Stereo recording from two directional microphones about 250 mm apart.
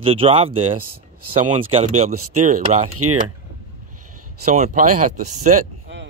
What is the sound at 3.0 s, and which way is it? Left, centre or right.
Speech, right.